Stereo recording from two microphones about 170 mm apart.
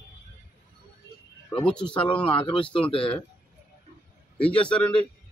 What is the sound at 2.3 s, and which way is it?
Speech, 30° left (ahead or behind).